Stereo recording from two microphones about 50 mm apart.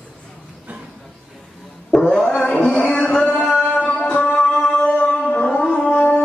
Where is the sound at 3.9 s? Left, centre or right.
Left.